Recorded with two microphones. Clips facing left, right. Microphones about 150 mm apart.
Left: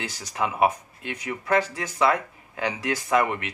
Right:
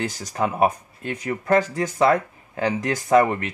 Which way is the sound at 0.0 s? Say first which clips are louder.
Right 4 dB; 50° right (ahead or behind).